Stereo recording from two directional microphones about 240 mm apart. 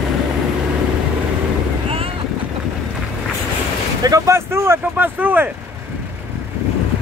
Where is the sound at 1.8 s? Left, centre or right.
Right.